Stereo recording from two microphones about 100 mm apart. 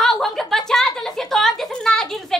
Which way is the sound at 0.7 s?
5° left (ahead or behind).